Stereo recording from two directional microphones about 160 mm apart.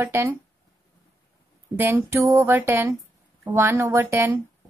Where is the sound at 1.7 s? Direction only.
15° right (ahead or behind).